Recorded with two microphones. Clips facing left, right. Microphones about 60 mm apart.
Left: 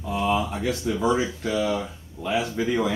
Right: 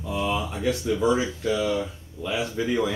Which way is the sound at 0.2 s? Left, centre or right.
Centre.